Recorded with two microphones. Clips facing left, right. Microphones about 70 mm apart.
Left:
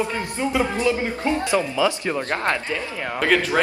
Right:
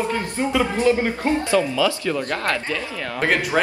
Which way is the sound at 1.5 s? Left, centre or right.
Left.